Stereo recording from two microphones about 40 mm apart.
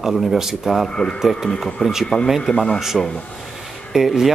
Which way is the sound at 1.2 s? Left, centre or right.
Centre.